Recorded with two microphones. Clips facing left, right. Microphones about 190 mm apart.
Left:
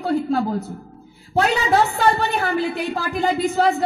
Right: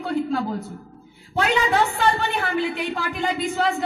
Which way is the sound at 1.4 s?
40° left (ahead or behind).